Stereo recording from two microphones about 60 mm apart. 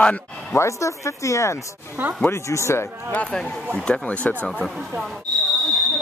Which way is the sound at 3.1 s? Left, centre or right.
Left.